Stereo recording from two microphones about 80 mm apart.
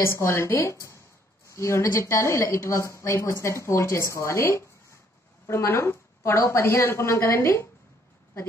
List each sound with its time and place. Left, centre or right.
0.0 s speech: left